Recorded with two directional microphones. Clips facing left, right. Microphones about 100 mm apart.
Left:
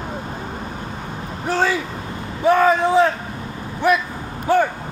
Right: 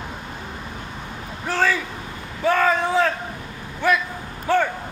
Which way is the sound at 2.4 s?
20° left (ahead or behind).